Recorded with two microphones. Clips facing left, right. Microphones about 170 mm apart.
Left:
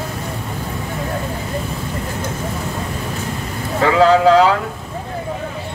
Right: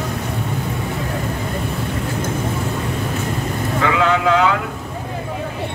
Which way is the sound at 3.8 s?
35° left (ahead or behind).